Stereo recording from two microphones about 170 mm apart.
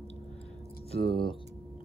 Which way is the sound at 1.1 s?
30° left (ahead or behind).